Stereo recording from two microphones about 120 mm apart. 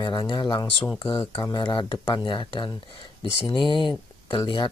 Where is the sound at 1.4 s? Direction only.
35° left (ahead or behind).